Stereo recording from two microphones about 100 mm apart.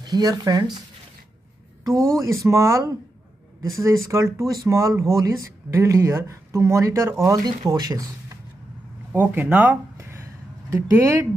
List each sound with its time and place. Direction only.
0.0 s speech: 40° right (ahead or behind)
1.9 s speech: 35° right (ahead or behind)
7.4 s speech: 40° right (ahead or behind)
9.1 s speech: 20° right (ahead or behind)